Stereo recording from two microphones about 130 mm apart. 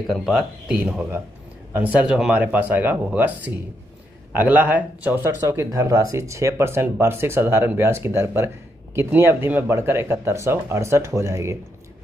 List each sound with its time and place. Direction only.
0.0 s speech: centre (ahead or behind); by 11.5 s 20° right (ahead or behind)